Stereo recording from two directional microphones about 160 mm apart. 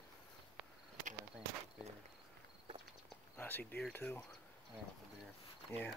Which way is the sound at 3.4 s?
10° left (ahead or behind).